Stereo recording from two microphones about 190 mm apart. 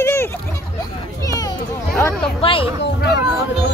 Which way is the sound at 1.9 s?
5° left (ahead or behind).